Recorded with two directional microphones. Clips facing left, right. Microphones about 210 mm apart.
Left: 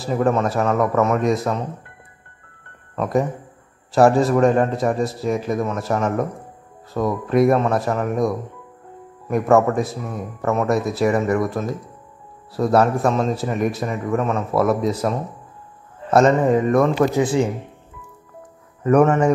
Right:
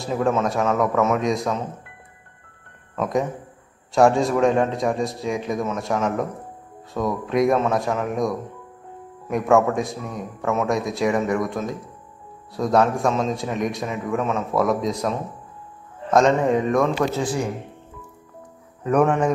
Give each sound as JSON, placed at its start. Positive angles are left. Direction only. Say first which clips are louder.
{"t": 0.0, "sound": "a man's voice", "louder": "left 2 dB", "side_deg": 0}
{"t": 3.0, "sound": "a man's voice", "louder": "left 2 dB", "side_deg": 0}
{"t": 17.1, "sound": "speech", "louder": "left 6 dB", "side_deg": 20}
{"t": 18.9, "sound": "a man's voice", "louder": "left 4 dB", "side_deg": 5}